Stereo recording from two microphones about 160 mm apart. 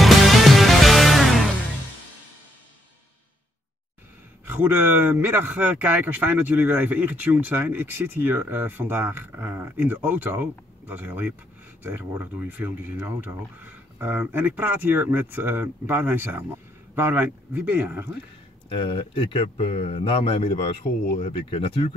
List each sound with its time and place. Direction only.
0.0 s music: centre (ahead or behind)
4.5 s speech: 15° right (ahead or behind)
18.7 s speech: 35° left (ahead or behind)